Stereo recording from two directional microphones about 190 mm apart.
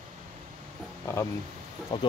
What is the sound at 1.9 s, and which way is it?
Speech, 25° left (ahead or behind).